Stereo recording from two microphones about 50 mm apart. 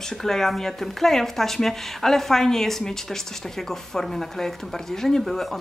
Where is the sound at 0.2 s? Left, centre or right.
Centre.